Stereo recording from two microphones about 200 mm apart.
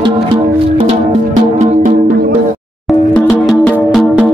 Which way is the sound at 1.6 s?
40° right (ahead or behind).